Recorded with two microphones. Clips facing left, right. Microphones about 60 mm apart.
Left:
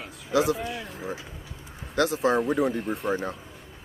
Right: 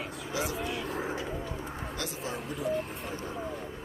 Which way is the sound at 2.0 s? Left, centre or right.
Left.